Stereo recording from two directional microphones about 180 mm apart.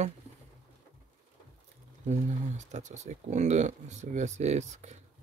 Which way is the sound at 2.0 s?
40° right (ahead or behind).